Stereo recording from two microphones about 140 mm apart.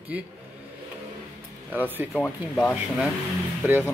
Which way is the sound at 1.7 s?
15° right (ahead or behind).